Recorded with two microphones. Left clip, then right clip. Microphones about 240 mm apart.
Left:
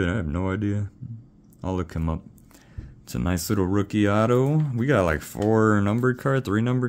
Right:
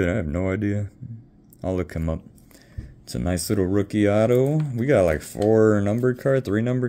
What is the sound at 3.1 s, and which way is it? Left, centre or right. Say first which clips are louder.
Speech: right 2 dB; centre.